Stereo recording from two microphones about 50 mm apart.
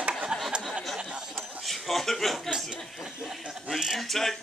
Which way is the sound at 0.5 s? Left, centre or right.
Centre.